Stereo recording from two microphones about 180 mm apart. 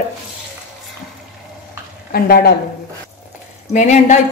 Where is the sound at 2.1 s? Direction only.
60° left (ahead or behind).